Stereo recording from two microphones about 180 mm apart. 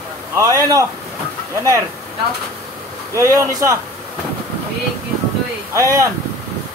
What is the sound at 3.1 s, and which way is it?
Speech, 15° right (ahead or behind).